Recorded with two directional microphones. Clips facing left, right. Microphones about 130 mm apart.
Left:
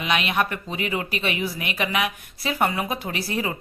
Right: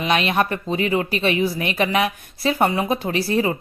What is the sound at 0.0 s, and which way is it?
Speech, 35° right (ahead or behind).